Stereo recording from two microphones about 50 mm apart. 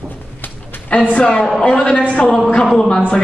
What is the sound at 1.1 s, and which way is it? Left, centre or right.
A man's voice, left.